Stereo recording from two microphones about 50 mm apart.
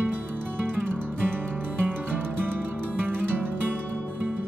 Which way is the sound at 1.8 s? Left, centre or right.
Right.